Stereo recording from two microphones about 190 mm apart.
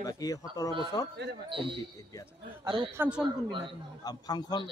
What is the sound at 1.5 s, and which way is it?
Speech, 25° right (ahead or behind).